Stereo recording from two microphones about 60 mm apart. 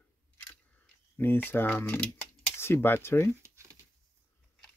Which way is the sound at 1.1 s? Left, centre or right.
Left.